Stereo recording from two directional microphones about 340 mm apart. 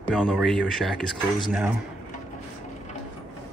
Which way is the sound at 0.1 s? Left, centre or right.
Centre.